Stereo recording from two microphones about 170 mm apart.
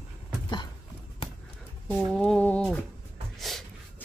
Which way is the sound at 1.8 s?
5° left (ahead or behind).